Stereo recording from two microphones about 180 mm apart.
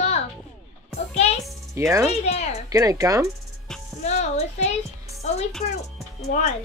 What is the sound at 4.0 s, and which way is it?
Speech, 40° left (ahead or behind).